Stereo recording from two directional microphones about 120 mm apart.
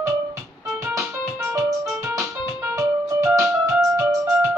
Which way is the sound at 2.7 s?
25° right (ahead or behind).